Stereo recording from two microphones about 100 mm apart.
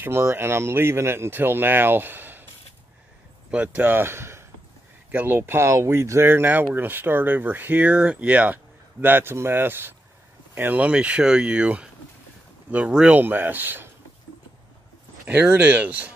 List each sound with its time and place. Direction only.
0.0 s speech: 20° right (ahead or behind)
3.5 s speech: 15° right (ahead or behind)
15.2 s speech: 15° right (ahead or behind)